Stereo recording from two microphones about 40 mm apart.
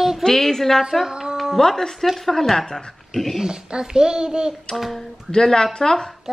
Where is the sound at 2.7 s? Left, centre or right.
Centre.